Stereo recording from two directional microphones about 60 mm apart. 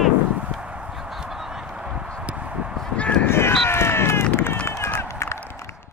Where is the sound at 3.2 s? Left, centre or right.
Left.